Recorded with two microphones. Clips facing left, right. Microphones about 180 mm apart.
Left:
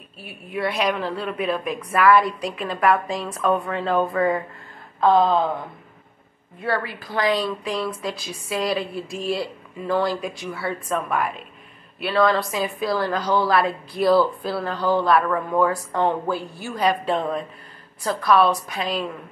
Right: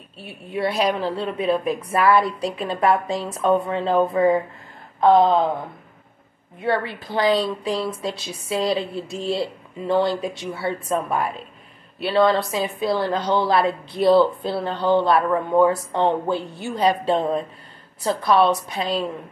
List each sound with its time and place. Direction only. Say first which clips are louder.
0.2 s speech: right 2 dB; 25° right (ahead or behind)
6.6 s speech: right 3 dB; 25° right (ahead or behind)